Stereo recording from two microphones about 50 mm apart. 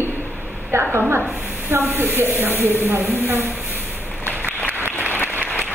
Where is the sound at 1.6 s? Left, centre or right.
Right.